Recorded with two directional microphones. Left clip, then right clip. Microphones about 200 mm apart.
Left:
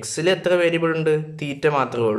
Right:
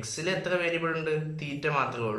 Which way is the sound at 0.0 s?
45° left (ahead or behind).